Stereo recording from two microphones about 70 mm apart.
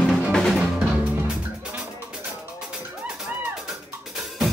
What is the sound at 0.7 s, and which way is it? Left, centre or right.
Music, centre.